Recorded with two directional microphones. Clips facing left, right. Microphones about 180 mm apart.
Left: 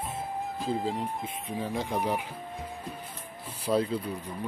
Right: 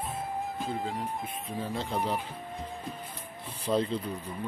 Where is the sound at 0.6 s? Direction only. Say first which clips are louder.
Left 7 dB; centre (ahead or behind).